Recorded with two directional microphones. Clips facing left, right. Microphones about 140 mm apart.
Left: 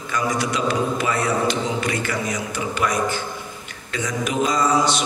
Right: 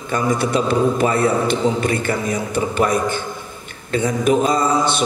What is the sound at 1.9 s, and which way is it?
Mantra, 30° right (ahead or behind).